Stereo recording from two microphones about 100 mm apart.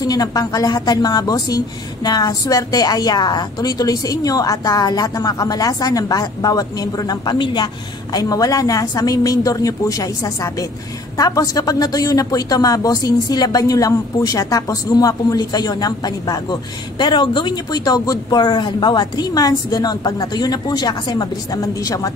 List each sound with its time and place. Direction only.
0.0 s a woman's voice: 40° left (ahead or behind)